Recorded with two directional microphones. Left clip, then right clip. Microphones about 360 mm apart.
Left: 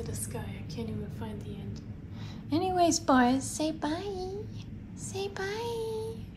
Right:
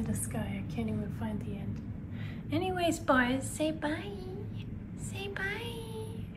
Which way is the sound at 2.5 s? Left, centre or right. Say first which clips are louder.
Left 5 dB; centre.